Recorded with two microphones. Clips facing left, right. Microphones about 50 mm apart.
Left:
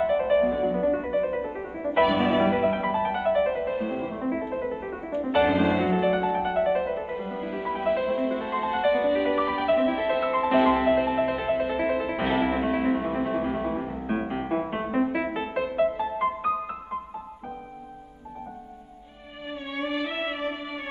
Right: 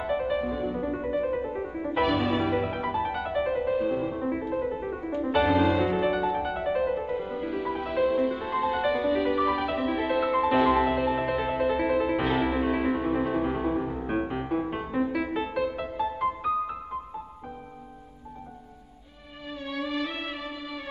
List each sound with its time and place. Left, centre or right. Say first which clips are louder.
0.2 s music: left 6 dB; left
2.1 s music: left 3 dB; left
20.0 s music: left 3 dB; left